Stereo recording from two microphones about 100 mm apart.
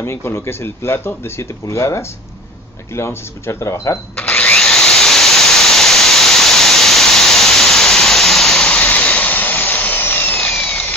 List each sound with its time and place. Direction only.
0.0 s speech: 25° left (ahead or behind)
4.2 s drill: 15° left (ahead or behind)
4.6 s a sound: 5° left (ahead or behind); by 10.4 s 20° left (ahead or behind)
10.6 s tools: 20° left (ahead or behind)